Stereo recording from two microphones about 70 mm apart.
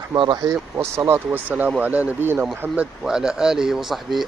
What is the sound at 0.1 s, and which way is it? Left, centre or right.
Speech, right.